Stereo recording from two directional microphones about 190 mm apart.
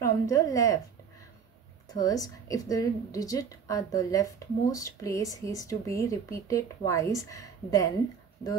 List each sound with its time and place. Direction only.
0.0 s speech: 15° left (ahead or behind)
2.0 s a woman's voice: 20° left (ahead or behind)